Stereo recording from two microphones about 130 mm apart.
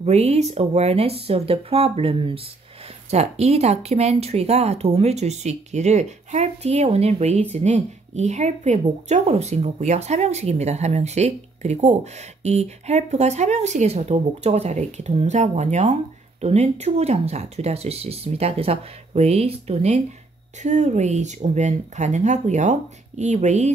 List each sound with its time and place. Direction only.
0.0 s speech: 60° right (ahead or behind)
3.1 s a woman's voice: 55° right (ahead or behind)